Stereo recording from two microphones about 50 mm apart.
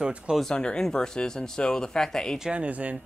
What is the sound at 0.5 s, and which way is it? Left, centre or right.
Speech, centre.